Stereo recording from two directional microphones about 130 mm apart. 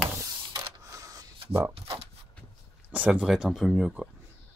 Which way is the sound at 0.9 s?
25° right (ahead or behind).